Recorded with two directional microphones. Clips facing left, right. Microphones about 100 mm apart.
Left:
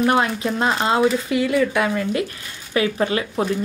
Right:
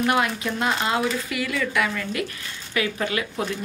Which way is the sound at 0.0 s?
30° left (ahead or behind).